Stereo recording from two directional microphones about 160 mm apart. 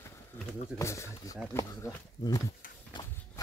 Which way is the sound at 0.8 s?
15° left (ahead or behind).